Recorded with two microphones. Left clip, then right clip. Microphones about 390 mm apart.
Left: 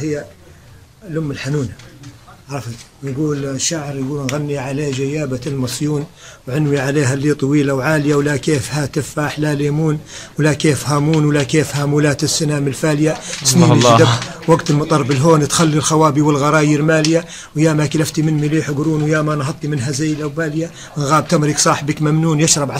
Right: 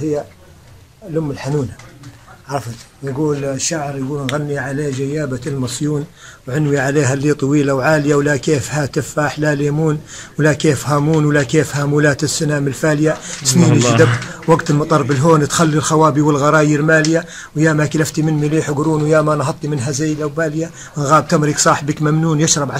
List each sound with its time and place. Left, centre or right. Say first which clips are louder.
2.5 s speech: right 5 dB; centre
3.3 s speech: right 1 dB; centre